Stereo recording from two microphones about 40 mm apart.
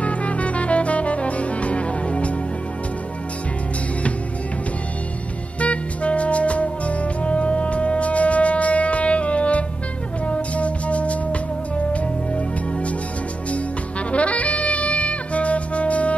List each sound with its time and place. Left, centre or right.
0.0 s music: left
5.6 s music: left
14.1 s music: left